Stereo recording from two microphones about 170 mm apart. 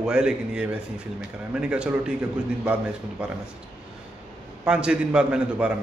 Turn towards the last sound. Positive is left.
turn(degrees=-5)  # may be behind; listen again after turning